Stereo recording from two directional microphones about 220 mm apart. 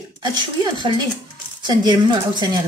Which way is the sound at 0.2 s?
20° right (ahead or behind).